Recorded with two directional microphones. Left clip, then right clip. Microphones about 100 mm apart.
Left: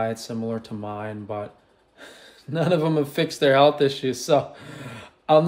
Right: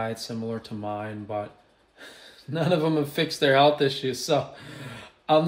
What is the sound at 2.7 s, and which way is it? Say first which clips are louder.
Speech: left 1 dB; 30° left (ahead or behind).